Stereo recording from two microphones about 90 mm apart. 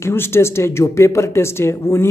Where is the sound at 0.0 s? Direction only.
25° left (ahead or behind).